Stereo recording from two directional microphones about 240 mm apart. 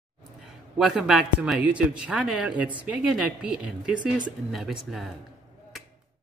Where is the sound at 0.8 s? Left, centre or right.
Centre.